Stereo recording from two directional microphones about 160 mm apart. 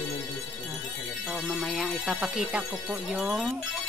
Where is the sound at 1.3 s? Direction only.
Centre (ahead or behind).